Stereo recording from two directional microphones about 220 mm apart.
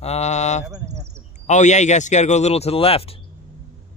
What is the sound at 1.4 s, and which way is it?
Speech, 30° left (ahead or behind).